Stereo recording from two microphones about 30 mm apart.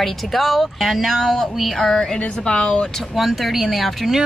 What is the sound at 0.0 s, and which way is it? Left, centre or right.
Speech, centre.